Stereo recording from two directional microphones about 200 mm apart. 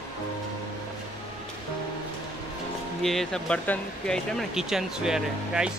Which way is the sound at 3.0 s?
Centre (ahead or behind).